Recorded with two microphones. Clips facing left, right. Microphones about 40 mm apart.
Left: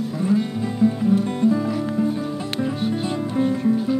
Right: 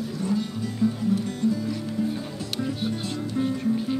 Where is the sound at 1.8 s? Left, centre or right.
Left.